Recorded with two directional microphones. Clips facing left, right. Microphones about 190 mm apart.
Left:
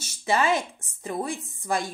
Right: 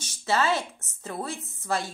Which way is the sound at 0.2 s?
15° left (ahead or behind).